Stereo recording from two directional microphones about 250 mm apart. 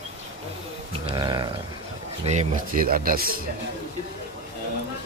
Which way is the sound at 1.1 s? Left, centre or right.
Centre.